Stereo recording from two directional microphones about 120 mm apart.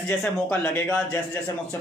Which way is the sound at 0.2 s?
10° left (ahead or behind).